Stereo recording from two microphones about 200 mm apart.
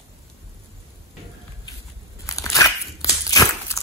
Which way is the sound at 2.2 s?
15° left (ahead or behind).